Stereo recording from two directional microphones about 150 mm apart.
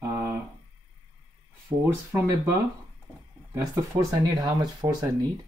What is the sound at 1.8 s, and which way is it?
Speech, 15° right (ahead or behind).